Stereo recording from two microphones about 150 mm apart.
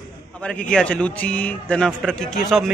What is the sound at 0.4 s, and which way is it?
A man's voice, 5° left (ahead or behind).